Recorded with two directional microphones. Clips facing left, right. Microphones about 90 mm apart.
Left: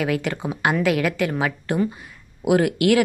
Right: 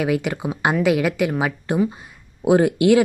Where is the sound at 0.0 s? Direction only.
20° right (ahead or behind).